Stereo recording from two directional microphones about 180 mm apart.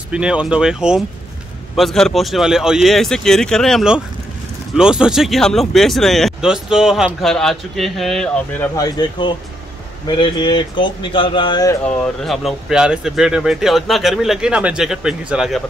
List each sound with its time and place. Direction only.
0.1 s speech: 5° right (ahead or behind)
8.7 s speech: 20° left (ahead or behind)
12.0 s speech: centre (ahead or behind)